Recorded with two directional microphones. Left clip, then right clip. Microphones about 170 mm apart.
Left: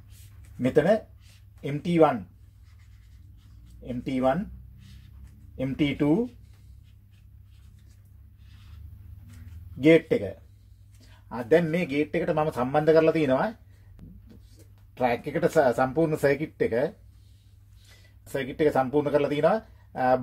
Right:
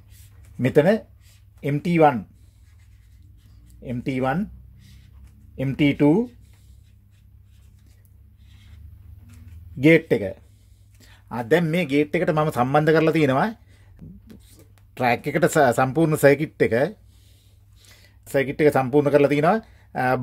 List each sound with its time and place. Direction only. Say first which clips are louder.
0.6 s speech: right 4 dB; 65° right (ahead or behind)
3.8 s speech: right 1 dB; 65° right (ahead or behind)
5.6 s speech: right 6 dB; 65° right (ahead or behind)
9.8 s speech: right 3 dB; 70° right (ahead or behind)
14.0 s beatboxing: right 6 dB; centre (ahead or behind)
15.0 s speech: right 5 dB; 60° right (ahead or behind)
18.2 s speech: right 6 dB; 65° right (ahead or behind)